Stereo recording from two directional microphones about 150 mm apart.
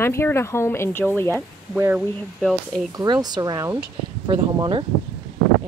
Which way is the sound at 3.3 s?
25° right (ahead or behind).